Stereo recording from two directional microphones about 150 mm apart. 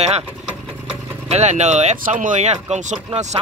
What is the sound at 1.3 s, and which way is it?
Speech, 50° right (ahead or behind).